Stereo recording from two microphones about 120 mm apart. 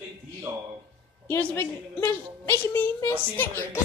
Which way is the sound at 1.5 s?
15° left (ahead or behind).